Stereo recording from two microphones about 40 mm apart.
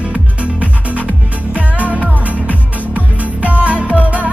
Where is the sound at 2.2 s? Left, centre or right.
Right.